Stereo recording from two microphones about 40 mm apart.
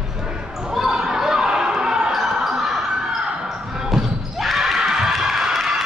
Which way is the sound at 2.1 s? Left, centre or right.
Centre.